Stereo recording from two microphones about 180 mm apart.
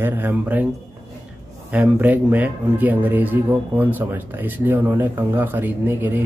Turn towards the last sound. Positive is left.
turn(degrees=-10)  # may be behind; listen again after turning